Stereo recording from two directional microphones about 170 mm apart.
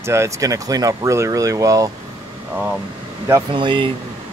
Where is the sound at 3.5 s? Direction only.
30° right (ahead or behind).